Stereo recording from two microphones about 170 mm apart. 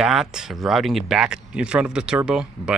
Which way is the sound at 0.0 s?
5° right (ahead or behind).